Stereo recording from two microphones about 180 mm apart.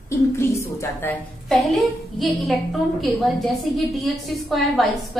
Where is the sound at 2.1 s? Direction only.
Centre (ahead or behind).